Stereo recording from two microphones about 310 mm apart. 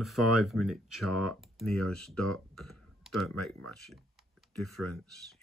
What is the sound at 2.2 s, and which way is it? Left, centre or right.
Speech, right.